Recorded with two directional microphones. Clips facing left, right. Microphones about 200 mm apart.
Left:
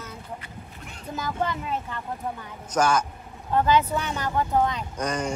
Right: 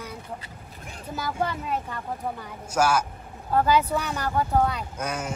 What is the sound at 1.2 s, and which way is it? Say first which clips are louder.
Speech: even; 10° right (ahead or behind).